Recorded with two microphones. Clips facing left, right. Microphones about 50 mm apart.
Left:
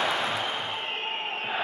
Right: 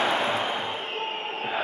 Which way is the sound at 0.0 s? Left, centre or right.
Right.